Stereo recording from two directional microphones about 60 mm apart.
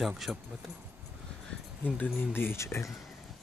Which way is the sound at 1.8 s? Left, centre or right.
Left.